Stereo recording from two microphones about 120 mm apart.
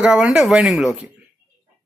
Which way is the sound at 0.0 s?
10° right (ahead or behind).